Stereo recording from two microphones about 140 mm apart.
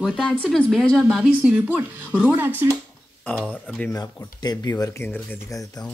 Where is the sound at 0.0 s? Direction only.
Centre (ahead or behind).